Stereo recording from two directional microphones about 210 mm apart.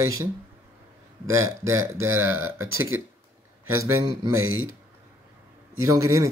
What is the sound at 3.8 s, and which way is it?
Speech, 20° right (ahead or behind).